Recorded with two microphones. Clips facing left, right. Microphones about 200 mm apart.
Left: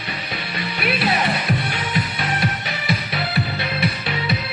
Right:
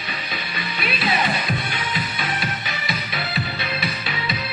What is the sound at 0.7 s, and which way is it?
Music, 70° left (ahead or behind).